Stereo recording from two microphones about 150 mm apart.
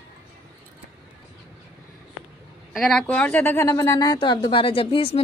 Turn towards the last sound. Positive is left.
turn(degrees=35)  # may be behind; listen again after turning